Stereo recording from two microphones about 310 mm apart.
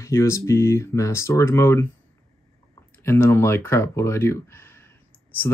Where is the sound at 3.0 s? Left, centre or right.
Centre.